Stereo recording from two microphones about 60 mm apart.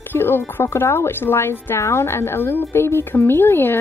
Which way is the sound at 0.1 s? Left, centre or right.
Left.